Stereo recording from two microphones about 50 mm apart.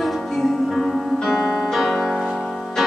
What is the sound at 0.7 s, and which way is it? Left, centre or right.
Music, centre.